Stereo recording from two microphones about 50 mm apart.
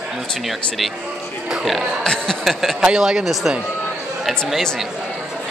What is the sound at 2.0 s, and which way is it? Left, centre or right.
Speech, centre.